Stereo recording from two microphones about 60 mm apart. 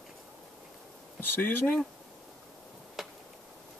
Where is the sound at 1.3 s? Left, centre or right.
Left.